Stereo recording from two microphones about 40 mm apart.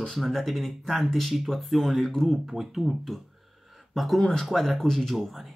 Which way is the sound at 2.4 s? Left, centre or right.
Centre.